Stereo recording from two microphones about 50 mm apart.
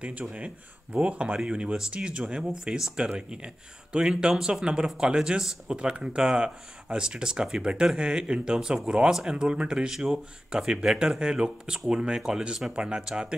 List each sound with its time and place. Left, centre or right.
0.9 s speech: right